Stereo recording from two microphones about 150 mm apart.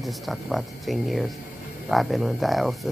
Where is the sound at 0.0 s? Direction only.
Centre (ahead or behind).